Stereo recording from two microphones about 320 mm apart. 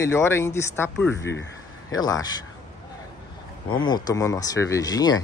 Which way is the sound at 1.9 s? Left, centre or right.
Centre.